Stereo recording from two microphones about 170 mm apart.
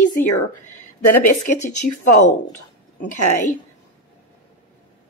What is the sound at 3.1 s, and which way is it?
Speech, 50° left (ahead or behind).